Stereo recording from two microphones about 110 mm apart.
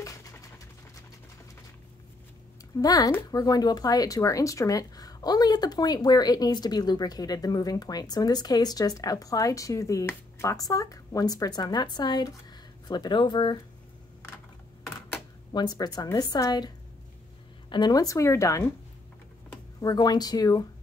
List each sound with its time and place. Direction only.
0.0 s a sound: 30° left (ahead or behind)
2.8 s speech: 35° left (ahead or behind)
15.5 s speech: 40° left (ahead or behind)
19.8 s speech: 35° left (ahead or behind)